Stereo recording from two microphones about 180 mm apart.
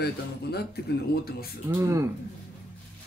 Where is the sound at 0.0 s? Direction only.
65° left (ahead or behind).